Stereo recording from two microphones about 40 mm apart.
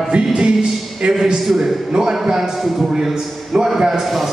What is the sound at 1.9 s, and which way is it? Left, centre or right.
A man's voice, centre.